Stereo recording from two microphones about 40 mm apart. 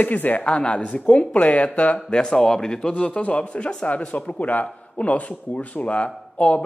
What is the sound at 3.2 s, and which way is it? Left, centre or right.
Speech, left.